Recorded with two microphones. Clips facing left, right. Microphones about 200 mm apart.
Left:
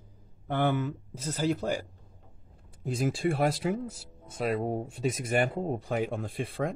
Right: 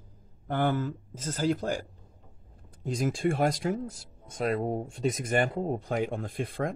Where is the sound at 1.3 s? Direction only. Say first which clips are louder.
Right 1 dB; 10° left (ahead or behind).